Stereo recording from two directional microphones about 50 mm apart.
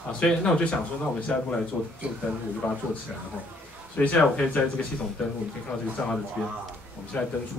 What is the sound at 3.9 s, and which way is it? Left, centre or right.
Speech, left.